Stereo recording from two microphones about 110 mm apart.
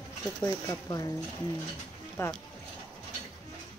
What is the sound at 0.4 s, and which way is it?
Speech, 30° left (ahead or behind).